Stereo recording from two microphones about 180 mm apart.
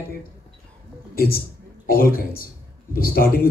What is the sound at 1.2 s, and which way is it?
A man's voice, 55° left (ahead or behind).